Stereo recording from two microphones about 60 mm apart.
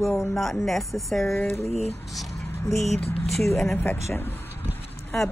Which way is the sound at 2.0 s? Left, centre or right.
Centre.